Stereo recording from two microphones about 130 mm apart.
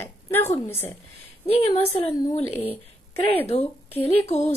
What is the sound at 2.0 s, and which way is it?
Speech, 55° left (ahead or behind).